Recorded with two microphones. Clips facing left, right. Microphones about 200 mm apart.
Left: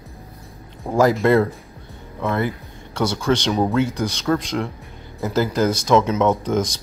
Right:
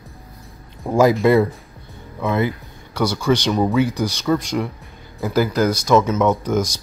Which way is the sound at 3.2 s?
Centre (ahead or behind).